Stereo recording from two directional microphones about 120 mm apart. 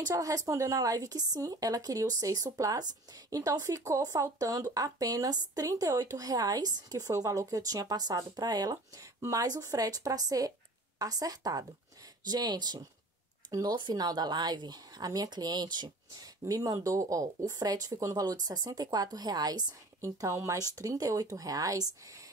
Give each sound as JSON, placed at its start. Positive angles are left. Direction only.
{"t": 0.1, "sound": "a woman's voice", "side_deg": -30}